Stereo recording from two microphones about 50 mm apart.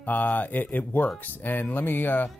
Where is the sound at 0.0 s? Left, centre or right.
Left.